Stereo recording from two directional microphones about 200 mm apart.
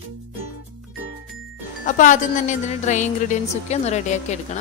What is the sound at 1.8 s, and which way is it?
A woman's voice, 40° left (ahead or behind).